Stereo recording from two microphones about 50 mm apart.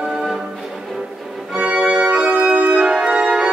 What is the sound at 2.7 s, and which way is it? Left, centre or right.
Music, centre.